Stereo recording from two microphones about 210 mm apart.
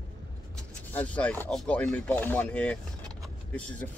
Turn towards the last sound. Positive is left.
turn(degrees=5)  # may be behind; listen again after turning